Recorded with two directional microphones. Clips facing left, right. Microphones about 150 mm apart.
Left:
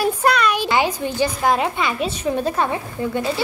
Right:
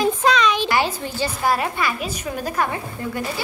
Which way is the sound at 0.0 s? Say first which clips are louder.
Even; 10° left (ahead or behind).